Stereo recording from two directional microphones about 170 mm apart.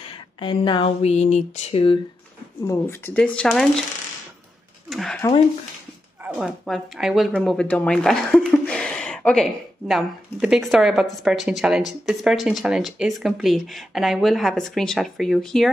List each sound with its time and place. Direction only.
0.4 s speech: 30° left (ahead or behind)
2.6 s speech: 15° left (ahead or behind)
4.8 s a sound: centre (ahead or behind)
6.2 s speech: 5° right (ahead or behind)